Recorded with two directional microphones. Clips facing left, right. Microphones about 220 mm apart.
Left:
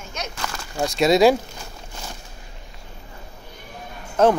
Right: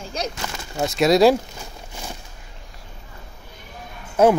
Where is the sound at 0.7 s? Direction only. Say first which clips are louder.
Right 1 dB; centre (ahead or behind).